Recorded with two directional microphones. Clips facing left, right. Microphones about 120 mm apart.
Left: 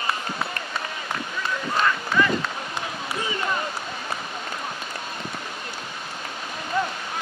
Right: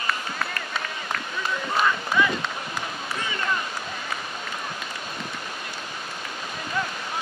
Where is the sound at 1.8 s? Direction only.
10° right (ahead or behind).